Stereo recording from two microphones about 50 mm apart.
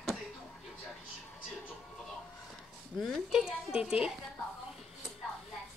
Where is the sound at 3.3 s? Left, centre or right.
Centre.